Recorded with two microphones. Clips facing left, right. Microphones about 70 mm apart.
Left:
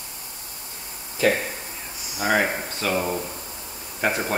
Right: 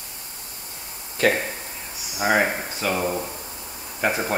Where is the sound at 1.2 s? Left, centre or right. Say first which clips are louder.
Even; right.